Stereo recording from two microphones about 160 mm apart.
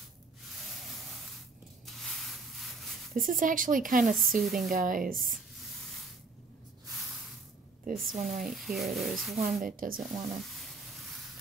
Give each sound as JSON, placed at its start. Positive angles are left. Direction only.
{"t": 0.7, "sound": "a sound", "side_deg": 0}
{"t": 1.9, "sound": "rub", "side_deg": 0}
{"t": 3.2, "sound": "speech", "side_deg": -55}
{"t": 4.4, "sound": "speech", "side_deg": 0}
{"t": 4.6, "sound": "speech", "side_deg": -60}
{"t": 5.1, "sound": "speech", "side_deg": 0}
{"t": 8.0, "sound": "speech", "side_deg": 0}
{"t": 9.7, "sound": "speech", "side_deg": -60}
{"t": 10.0, "sound": "a sound", "side_deg": 0}